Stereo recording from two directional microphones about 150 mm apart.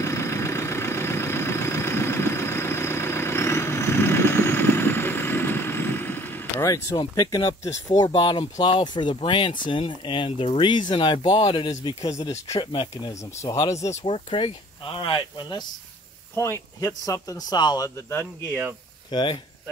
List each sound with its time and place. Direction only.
0.0 s vehicle: 20° left (ahead or behind)
8.0 s speech: 30° left (ahead or behind)
12.0 s speech: 20° left (ahead or behind)
12.5 s speech: 35° left (ahead or behind)
13.9 s speech: 35° left (ahead or behind)
16.3 s speech: 20° left (ahead or behind)
19.0 s speech: 30° left (ahead or behind)